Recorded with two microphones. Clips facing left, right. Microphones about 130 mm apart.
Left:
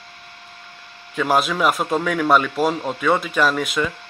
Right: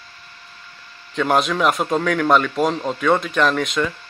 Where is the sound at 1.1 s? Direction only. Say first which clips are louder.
Right 1 dB; 5° left (ahead or behind).